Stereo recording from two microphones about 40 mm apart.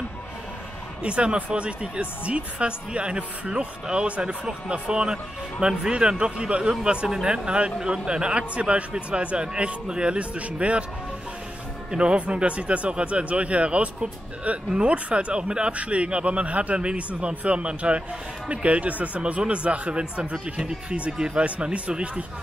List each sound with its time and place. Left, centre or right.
1.0 s speech: right
11.9 s speech: right